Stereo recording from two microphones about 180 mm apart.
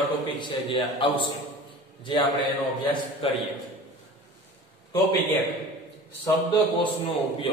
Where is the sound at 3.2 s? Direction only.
30° left (ahead or behind).